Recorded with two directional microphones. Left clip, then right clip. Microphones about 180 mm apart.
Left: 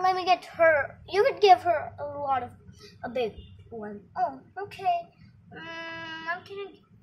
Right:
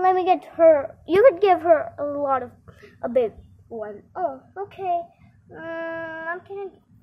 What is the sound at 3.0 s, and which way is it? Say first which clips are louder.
A woman's voice: right 8 dB; 50° right (ahead or behind).